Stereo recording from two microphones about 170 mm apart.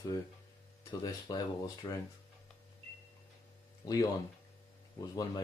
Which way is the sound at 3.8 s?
20° left (ahead or behind).